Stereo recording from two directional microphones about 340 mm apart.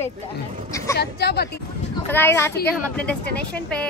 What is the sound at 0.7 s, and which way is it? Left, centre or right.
Speech, centre.